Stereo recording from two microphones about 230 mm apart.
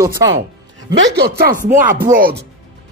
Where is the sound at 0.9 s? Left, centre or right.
Right.